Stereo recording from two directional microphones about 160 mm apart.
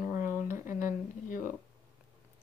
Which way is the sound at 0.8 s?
55° left (ahead or behind).